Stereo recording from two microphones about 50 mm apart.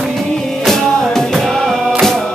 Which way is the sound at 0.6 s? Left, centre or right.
Centre.